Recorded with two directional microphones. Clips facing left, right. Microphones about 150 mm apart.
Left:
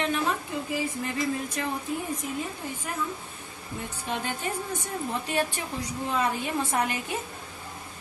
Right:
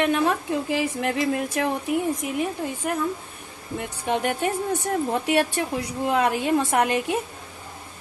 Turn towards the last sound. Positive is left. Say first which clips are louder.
# right 7 dB
turn(degrees=-75)  # may be behind; listen again after turning